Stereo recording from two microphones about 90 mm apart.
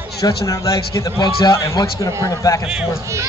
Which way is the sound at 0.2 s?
40° left (ahead or behind).